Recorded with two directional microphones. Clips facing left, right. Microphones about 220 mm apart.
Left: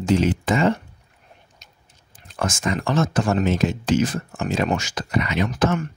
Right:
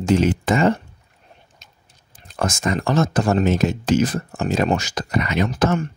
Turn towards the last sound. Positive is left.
turn(degrees=-35)  # may be behind; listen again after turning